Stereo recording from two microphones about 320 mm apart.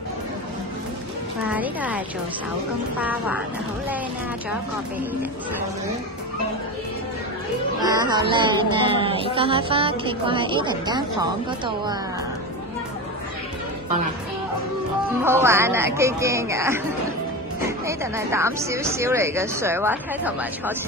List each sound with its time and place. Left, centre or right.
1.4 s a woman's voice: centre
7.8 s music: centre
15.2 s music: centre